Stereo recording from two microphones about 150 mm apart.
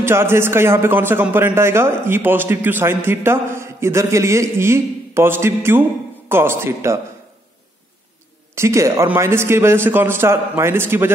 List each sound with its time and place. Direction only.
0.0 s a man's voice: 15° right (ahead or behind)
8.5 s a man's voice: 20° right (ahead or behind)